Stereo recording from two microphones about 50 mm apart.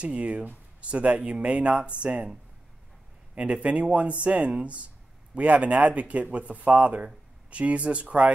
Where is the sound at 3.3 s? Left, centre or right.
Right.